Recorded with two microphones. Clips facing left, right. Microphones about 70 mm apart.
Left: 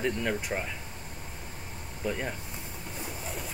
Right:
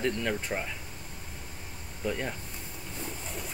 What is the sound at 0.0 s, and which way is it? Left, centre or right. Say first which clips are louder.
Speech: even; centre.